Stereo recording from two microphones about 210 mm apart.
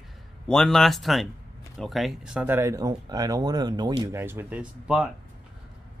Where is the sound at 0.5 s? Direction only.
5° left (ahead or behind); by 4.1 s 20° right (ahead or behind).